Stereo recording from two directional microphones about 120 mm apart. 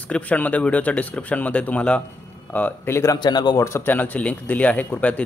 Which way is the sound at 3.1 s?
40° left (ahead or behind).